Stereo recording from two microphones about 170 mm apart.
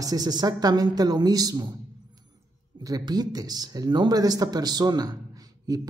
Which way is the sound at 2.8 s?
20° right (ahead or behind).